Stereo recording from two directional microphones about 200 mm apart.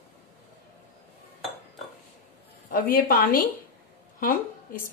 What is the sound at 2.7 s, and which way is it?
A woman's voice, 45° left (ahead or behind).